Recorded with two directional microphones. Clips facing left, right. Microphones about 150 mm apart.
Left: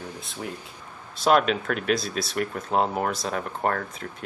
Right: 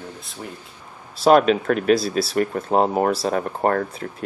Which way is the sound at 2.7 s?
35° right (ahead or behind).